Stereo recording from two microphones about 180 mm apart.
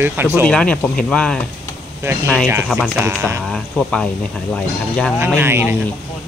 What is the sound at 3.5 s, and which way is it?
Speech, 5° left (ahead or behind).